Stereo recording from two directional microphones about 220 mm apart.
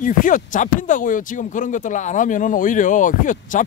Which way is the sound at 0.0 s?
35° left (ahead or behind).